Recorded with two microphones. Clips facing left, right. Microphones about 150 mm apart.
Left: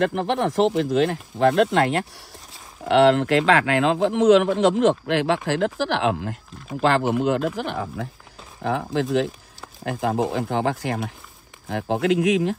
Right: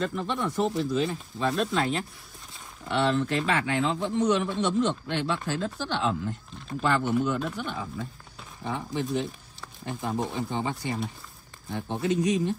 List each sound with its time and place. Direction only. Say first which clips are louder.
0.0 s a man's voice: left 7 dB; 85° left
1.4 s speech: left 9 dB; 70° left (ahead or behind)
2.9 s a man's voice: left 9 dB; 90° left
6.8 s speech: left 5 dB; 90° left; by 8.1 s 75° left (ahead or behind)
8.6 s a man's voice: left 7 dB; 90° left